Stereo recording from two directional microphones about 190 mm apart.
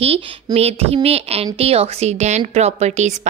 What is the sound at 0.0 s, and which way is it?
Speech, 30° right (ahead or behind).